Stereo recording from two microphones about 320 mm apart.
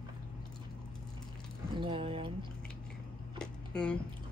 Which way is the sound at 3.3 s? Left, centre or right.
Centre.